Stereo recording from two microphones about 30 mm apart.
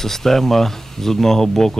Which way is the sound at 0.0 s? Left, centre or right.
Centre.